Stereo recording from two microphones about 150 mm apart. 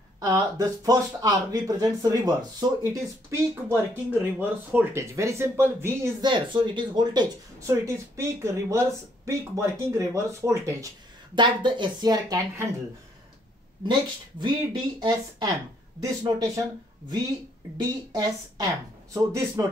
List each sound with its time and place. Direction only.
0.2 s speech: 20° right (ahead or behind)
6.2 s speech: 30° right (ahead or behind)
7.7 s speech: 20° right (ahead or behind)
14.4 s speech: 30° right (ahead or behind)
18.1 s speech: 25° right (ahead or behind)